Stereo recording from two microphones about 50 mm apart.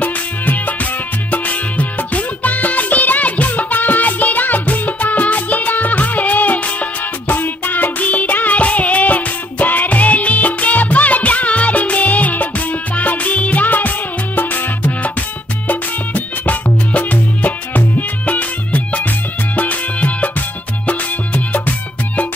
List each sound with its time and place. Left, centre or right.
0.0 s music: left